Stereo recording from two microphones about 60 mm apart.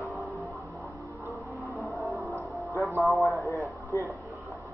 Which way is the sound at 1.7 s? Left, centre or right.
Centre.